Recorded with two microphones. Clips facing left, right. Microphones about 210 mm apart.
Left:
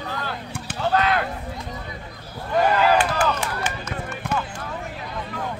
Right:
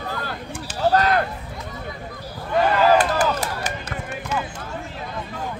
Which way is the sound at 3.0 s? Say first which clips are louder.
Right 2 dB; 40° right (ahead or behind).